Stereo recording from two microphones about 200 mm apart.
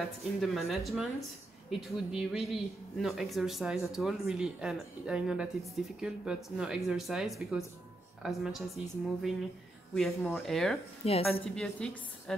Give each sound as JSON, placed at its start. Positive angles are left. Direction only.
{"t": 0.0, "sound": "speech", "side_deg": 0}
{"t": 11.1, "sound": "a woman's voice", "side_deg": 30}
{"t": 11.5, "sound": "speech", "side_deg": 5}